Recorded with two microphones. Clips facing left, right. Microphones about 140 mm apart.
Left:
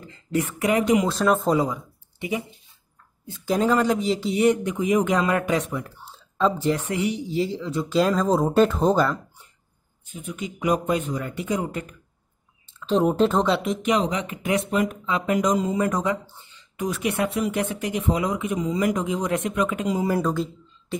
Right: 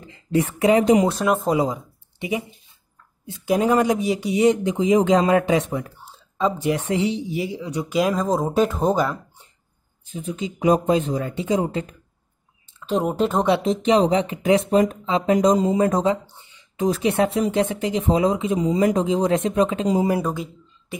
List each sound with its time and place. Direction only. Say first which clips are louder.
0.0 s speech: right 4 dB; 20° right (ahead or behind)
1.1 s speech: even; 5° right (ahead or behind)
1.6 s speech: right 2 dB; 20° right (ahead or behind)
10.1 s speech: right 4 dB; 30° right (ahead or behind)
12.8 s speech: left 2 dB; 5° right (ahead or behind)
13.5 s speech: right 4 dB; 30° right (ahead or behind)
16.3 s a sound: right 5 dB; 20° right (ahead or behind)
16.9 s speech: right 4 dB; 30° right (ahead or behind)